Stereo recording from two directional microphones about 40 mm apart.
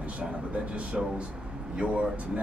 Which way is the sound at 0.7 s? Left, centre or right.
Right.